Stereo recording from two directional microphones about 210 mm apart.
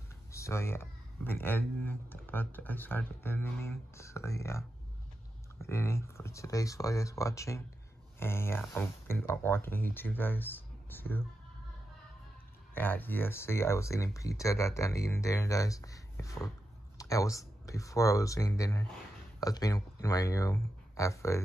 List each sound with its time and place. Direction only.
0.3 s speech: 15° left (ahead or behind)
12.7 s speech: 10° left (ahead or behind)